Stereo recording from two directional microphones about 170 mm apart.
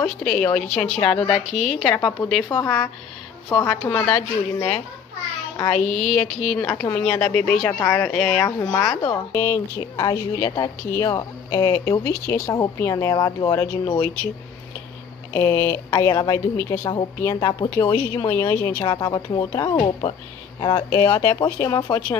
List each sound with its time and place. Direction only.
0.0 s speech: 5° left (ahead or behind)
0.8 s speech: 40° left (ahead or behind)
1.2 s speech: centre (ahead or behind)
2.5 s a woman's voice: 15° left (ahead or behind)
4.0 s speech: 5° left (ahead or behind)
6.6 s a woman's voice: 15° left (ahead or behind)
7.6 s a woman's voice: 15° left (ahead or behind)
8.5 s a woman's voice: 15° left (ahead or behind)
15.3 s a woman's voice: 15° left (ahead or behind)
18.3 s a woman's voice: 15° left (ahead or behind)
18.9 s speech: 25° left (ahead or behind)